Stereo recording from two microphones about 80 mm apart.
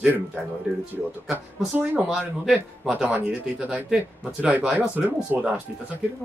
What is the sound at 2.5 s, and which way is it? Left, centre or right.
Speech, centre.